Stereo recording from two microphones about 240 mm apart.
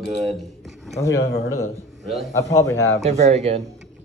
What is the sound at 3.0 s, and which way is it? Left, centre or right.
Speech, right.